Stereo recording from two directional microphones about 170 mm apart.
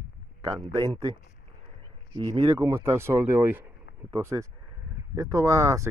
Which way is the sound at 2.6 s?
15° right (ahead or behind).